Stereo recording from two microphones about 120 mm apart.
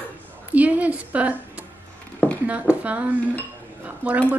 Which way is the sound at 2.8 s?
10° right (ahead or behind).